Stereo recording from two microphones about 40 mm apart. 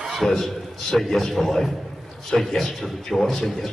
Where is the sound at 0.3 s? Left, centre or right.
Centre.